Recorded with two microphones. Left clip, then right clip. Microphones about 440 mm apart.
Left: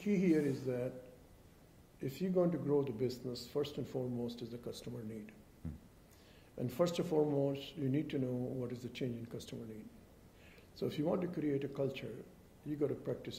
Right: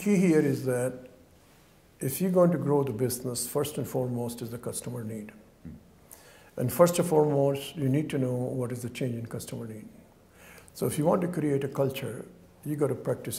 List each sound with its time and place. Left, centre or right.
0.0 s speech: right
2.0 s speech: right
5.6 s a sound: left
6.5 s speech: right